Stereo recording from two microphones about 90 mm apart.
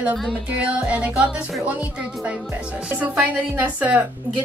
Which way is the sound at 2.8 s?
15° right (ahead or behind).